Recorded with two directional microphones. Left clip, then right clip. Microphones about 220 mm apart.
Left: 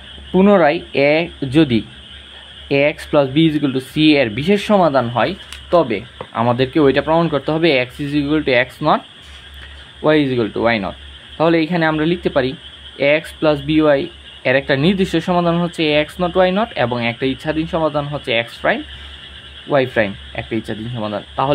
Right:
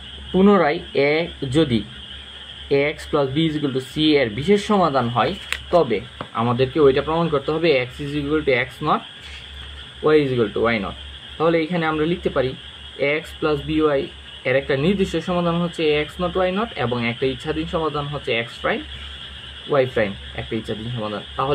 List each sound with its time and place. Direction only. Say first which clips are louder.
0.4 s speech: left 4 dB; 25° left (ahead or behind)
10.0 s speech: left 2 dB; 35° left (ahead or behind)